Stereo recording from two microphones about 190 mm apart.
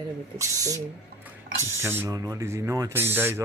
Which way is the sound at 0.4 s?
15° right (ahead or behind).